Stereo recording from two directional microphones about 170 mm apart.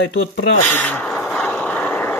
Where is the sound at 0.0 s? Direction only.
90° left.